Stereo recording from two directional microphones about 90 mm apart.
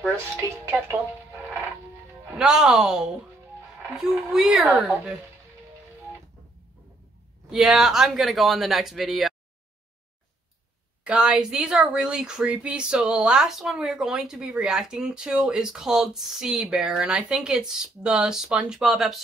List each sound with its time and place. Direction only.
0.7 s speech: 25° right (ahead or behind)
2.3 s speech: 5° right (ahead or behind)
4.3 s speech: 5° right (ahead or behind)
7.4 s speech: 5° right (ahead or behind)
11.1 s speech: 10° right (ahead or behind)